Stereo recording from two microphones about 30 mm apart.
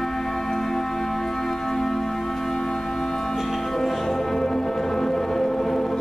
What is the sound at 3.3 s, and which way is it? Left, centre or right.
Music, centre.